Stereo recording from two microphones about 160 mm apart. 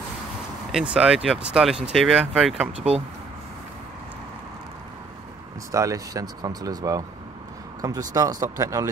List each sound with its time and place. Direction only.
0.7 s speech: 5° right (ahead or behind)
5.7 s speech: 20° right (ahead or behind)